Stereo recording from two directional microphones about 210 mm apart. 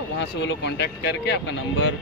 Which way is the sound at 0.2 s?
55° left (ahead or behind).